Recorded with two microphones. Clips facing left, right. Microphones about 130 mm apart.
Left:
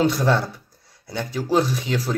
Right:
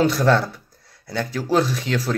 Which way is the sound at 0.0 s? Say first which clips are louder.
Right 2 dB; 20° left (ahead or behind).